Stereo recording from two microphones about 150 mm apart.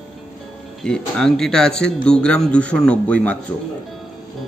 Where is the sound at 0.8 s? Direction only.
5° left (ahead or behind).